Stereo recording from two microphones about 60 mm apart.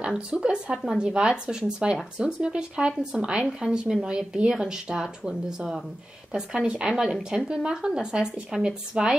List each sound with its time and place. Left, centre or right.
0.0 s speech: centre